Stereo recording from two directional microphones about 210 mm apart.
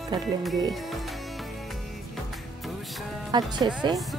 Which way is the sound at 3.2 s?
20° right (ahead or behind).